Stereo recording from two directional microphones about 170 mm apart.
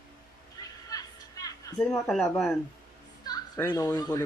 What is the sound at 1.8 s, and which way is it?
Speech, 5° left (ahead or behind).